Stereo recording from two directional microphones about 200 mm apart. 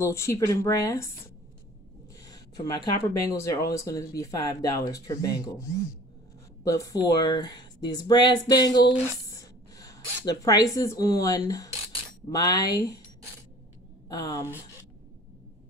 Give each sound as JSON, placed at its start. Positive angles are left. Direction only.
{"t": 0.0, "sound": "speech", "side_deg": 15}
{"t": 2.3, "sound": "speech", "side_deg": 20}
{"t": 14.0, "sound": "a woman's voice", "side_deg": 20}